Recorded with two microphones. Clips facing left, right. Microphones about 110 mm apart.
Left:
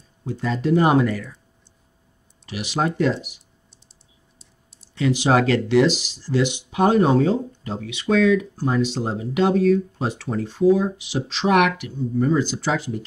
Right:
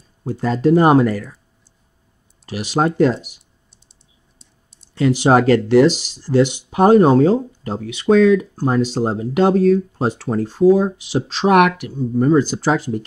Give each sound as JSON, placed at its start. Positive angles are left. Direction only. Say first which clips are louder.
{"t": 0.2, "sound": "speech", "louder": "right 7 dB", "side_deg": -40}
{"t": 2.4, "sound": "speech", "louder": "right 5 dB", "side_deg": -40}
{"t": 4.4, "sound": "clicking", "louder": "even", "side_deg": 0}
{"t": 4.9, "sound": "speech", "louder": "right 5 dB", "side_deg": -45}